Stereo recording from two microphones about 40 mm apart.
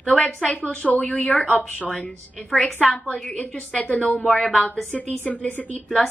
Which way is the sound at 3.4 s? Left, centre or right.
Left.